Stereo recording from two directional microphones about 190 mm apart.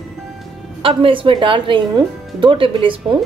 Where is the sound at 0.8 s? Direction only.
30° right (ahead or behind).